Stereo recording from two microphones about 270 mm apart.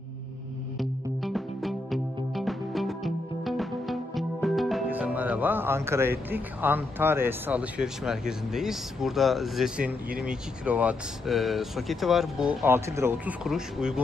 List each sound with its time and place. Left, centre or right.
0.7 s music: centre